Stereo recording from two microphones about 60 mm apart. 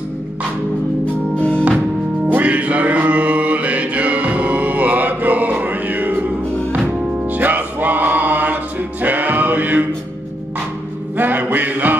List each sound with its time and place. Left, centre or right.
2.2 s music: right
7.2 s music: right
11.1 s music: right